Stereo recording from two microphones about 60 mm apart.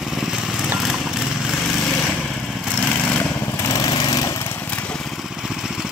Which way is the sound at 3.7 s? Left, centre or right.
Left.